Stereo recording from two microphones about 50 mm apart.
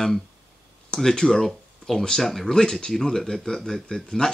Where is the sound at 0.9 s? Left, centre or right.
Centre.